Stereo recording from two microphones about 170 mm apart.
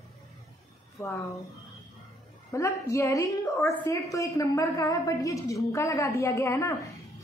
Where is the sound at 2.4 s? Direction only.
20° left (ahead or behind).